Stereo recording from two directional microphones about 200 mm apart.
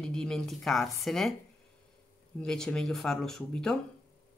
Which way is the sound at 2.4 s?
5° left (ahead or behind).